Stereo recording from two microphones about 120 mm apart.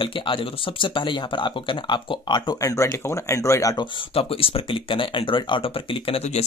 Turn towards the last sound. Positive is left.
turn(degrees=55)  # may be behind; listen again after turning